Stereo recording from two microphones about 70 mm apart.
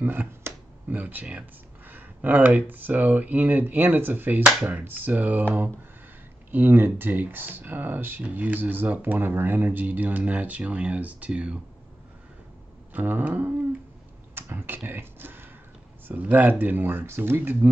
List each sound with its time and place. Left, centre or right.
0.0 s a sound: right
2.7 s speech: right
12.9 s speech: right